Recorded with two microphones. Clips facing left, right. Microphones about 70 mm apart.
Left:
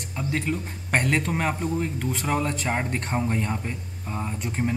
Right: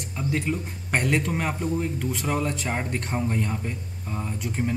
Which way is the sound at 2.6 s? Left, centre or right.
Centre.